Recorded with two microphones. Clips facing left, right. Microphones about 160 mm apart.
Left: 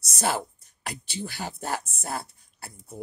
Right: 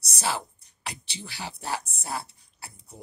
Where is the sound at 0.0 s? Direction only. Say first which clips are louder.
Left 3 dB; 50° left (ahead or behind).